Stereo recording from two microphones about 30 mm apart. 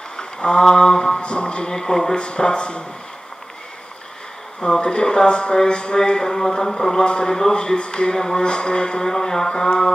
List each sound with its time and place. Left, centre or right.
0.2 s a sound: left
0.7 s a man's voice: left
1.2 s speech: left
1.8 s speech: centre
2.1 s speech: left
4.6 s speech: centre
4.8 s a man's voice: left
7.1 s a man's voice: left
9.0 s a man's voice: centre